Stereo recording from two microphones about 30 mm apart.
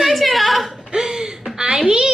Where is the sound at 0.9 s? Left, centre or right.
Right.